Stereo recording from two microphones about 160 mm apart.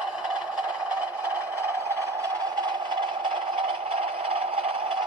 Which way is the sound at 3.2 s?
35° right (ahead or behind).